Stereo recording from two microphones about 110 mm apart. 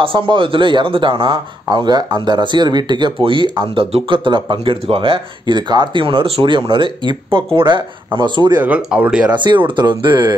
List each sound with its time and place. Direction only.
0.0 s speech: 55° right (ahead or behind)
8.5 s speech: 10° right (ahead or behind)
9.3 s speech: 45° right (ahead or behind)